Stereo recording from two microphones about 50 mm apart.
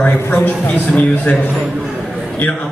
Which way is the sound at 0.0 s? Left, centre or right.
Left.